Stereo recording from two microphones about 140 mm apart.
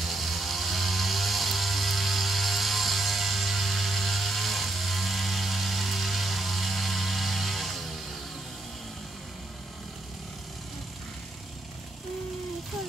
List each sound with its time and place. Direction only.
0.0 s chainsaw: centre (ahead or behind)